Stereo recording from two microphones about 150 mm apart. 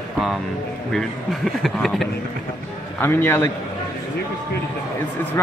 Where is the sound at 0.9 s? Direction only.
Centre (ahead or behind).